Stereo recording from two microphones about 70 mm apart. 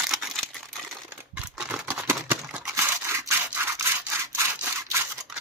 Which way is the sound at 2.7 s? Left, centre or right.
Right.